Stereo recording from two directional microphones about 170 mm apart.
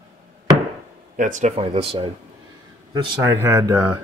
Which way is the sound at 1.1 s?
45° right (ahead or behind).